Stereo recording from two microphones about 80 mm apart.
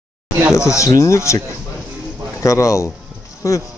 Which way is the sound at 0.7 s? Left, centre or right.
Left.